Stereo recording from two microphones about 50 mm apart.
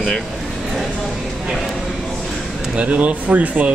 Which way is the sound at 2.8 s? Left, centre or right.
Right.